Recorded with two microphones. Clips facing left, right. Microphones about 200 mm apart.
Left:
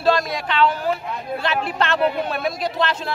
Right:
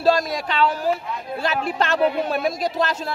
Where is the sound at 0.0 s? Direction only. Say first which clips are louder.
Right 1 dB; 40° right (ahead or behind).